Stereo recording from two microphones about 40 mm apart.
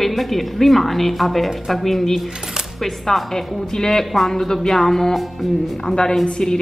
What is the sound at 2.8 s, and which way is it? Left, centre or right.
A woman's voice, centre.